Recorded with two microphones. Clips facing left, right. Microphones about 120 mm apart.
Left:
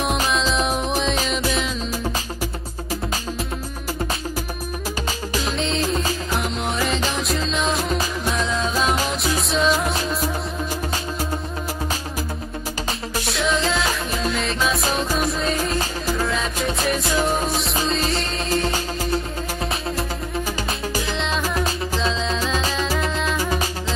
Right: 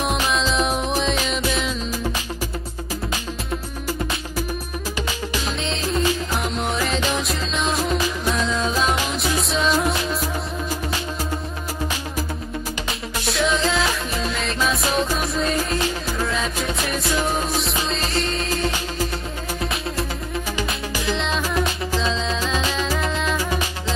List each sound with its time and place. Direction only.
0.3 s music: centre (ahead or behind)
6.3 s music: centre (ahead or behind)
13.3 s music: centre (ahead or behind)
21.1 s music: centre (ahead or behind)
22.5 s music: 40° left (ahead or behind)
22.8 s music: centre (ahead or behind)